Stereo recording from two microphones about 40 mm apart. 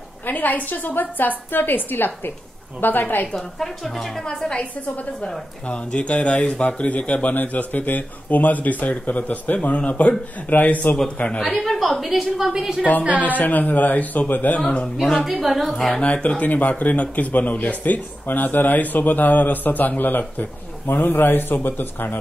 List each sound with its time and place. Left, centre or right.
0.3 s speech: left
3.3 s a woman's voice: centre
5.9 s speech: left
11.4 s a woman's voice: centre
13.0 s a woman's voice: right
13.4 s speech: left
15.2 s a woman's voice: centre
16.0 s speech: left
16.4 s speech: left
18.2 s a man's voice: left